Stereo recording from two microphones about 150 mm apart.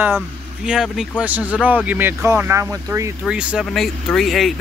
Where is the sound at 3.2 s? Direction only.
5° right (ahead or behind).